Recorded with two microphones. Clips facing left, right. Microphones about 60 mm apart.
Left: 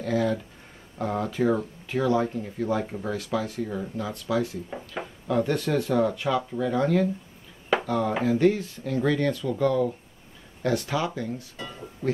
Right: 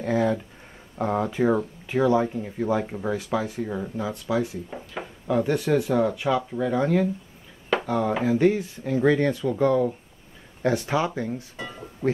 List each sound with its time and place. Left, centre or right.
0.0 s speech: right
4.6 s speech: centre
5.3 s speech: centre